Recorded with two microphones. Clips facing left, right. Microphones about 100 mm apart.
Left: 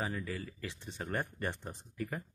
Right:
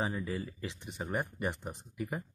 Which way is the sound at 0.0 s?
20° right (ahead or behind).